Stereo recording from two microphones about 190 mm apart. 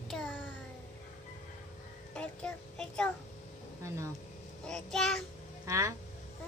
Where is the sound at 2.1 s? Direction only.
5° left (ahead or behind).